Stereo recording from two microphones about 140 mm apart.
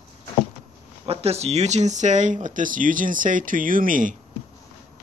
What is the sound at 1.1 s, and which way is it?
Speech, 45° right (ahead or behind).